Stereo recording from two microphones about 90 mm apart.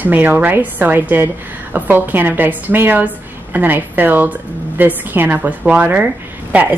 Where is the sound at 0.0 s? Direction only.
20° right (ahead or behind).